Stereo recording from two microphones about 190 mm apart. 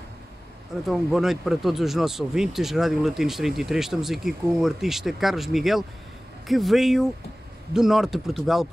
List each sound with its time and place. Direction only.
0.8 s speech: centre (ahead or behind)